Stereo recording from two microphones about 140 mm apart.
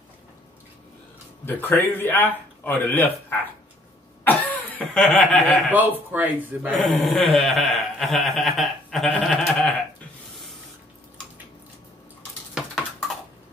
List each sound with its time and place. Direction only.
1.4 s a man's voice: 15° left (ahead or behind)
4.2 s cough: 10° left (ahead or behind)
5.7 s speech: 10° right (ahead or behind)
6.8 s speech: centre (ahead or behind)